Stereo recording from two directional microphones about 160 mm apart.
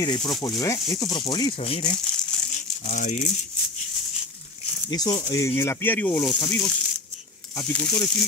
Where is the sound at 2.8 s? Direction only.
50° left (ahead or behind).